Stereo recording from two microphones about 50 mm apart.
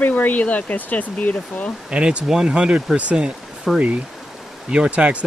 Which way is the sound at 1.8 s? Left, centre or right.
Right.